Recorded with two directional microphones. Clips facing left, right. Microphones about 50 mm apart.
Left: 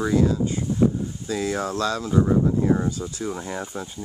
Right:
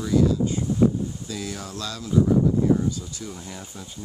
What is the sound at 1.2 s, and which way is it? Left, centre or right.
Speech, left.